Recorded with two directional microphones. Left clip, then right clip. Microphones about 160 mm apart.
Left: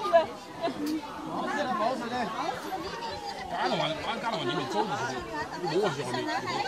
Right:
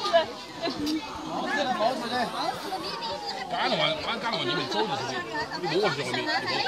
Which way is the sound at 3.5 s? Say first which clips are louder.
Right 3 dB; centre (ahead or behind).